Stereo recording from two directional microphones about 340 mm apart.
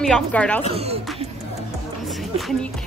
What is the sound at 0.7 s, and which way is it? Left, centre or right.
Speech, centre.